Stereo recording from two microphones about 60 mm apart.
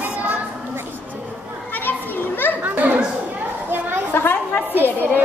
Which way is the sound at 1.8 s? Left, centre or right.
Left.